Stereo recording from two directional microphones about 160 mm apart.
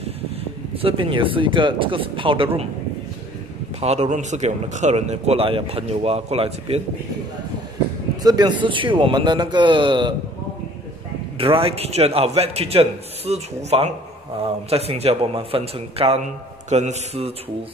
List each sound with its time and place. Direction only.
0.7 s a man's voice: 35° right (ahead or behind)
3.8 s speech: 45° right (ahead or behind)
8.2 s a man's voice: 25° right (ahead or behind)
11.3 s a man's voice: 35° right (ahead or behind)